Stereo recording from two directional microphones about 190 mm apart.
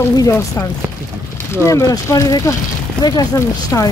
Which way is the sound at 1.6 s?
15° left (ahead or behind).